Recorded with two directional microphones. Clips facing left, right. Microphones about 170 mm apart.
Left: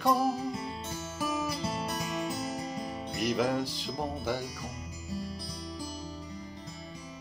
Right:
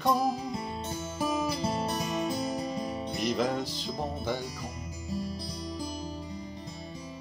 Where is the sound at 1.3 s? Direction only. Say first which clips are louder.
Right 3 dB; 25° right (ahead or behind).